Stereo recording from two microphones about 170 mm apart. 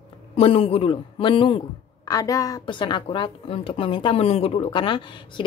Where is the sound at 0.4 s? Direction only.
35° left (ahead or behind).